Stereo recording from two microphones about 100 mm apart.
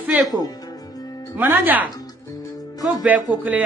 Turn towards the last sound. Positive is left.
turn(degrees=-15)  # may be behind; listen again after turning